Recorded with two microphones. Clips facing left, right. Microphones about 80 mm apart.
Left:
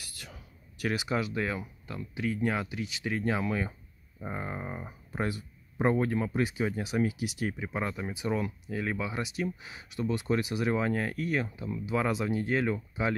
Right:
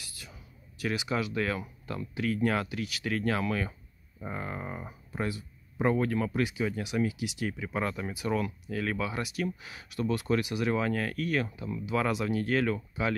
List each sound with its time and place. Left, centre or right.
0.2 s a sound: left
1.0 s speech: left
1.6 s speech: centre
2.1 s speech: centre
5.1 s speech: left
5.9 s speech: left
6.4 s speech: left
7.7 s speech: centre
8.1 s speech: left